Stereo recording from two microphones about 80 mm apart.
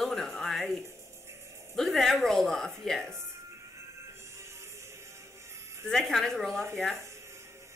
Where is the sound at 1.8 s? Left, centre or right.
Centre.